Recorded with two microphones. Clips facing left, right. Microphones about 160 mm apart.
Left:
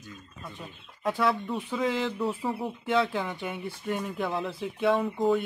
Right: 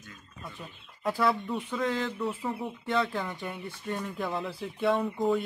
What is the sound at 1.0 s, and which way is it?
Speech, centre (ahead or behind).